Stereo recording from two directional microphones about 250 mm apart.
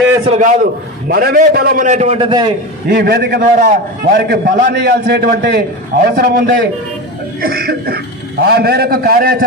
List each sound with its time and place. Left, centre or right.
0.2 s a man's voice: right
2.9 s a man's voice: right